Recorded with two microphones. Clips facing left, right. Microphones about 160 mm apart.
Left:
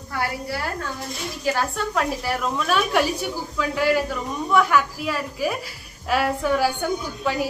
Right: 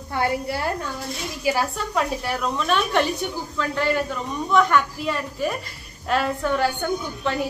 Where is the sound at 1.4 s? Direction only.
10° right (ahead or behind).